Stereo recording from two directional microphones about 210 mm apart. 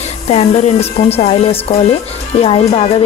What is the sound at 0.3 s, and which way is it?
Speech, 30° left (ahead or behind).